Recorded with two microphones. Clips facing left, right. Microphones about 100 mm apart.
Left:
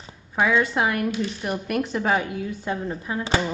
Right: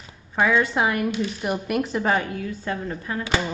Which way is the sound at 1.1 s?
20° right (ahead or behind).